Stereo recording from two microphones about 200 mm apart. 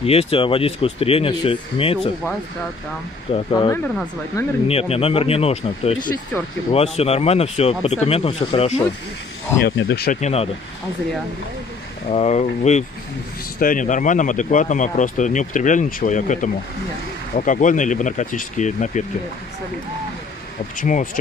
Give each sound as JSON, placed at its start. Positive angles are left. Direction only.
{"t": 0.0, "sound": "speech", "side_deg": 30}
{"t": 3.5, "sound": "speech", "side_deg": 20}
{"t": 3.8, "sound": "speech", "side_deg": 5}
{"t": 4.6, "sound": "speech", "side_deg": 30}
{"t": 9.6, "sound": "speech", "side_deg": 60}
{"t": 10.2, "sound": "speech", "side_deg": 30}
{"t": 12.1, "sound": "speech", "side_deg": 35}
{"t": 20.8, "sound": "speech", "side_deg": 40}